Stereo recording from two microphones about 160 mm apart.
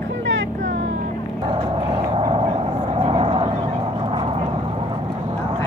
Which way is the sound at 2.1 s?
35° right (ahead or behind).